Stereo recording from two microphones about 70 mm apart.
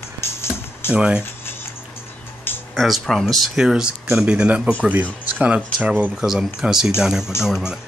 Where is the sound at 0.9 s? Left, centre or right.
Centre.